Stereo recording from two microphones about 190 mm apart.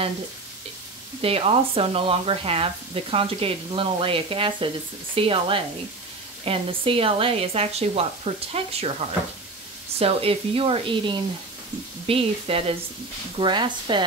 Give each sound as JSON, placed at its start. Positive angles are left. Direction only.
{"t": 1.2, "sound": "speech", "side_deg": -30}
{"t": 9.9, "sound": "speech", "side_deg": -30}